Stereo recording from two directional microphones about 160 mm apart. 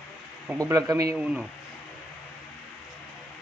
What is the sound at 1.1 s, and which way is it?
Speech, 5° right (ahead or behind).